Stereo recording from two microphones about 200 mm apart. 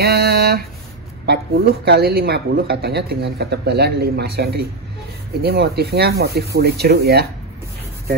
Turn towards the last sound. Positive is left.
turn(degrees=-55)  # may be behind; listen again after turning